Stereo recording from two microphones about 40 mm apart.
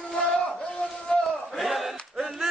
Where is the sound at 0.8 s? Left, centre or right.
Left.